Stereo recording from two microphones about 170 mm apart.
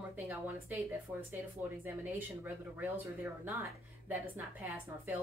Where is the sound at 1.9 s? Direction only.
10° right (ahead or behind).